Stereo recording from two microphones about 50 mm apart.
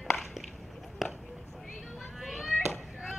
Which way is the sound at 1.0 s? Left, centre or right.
Centre.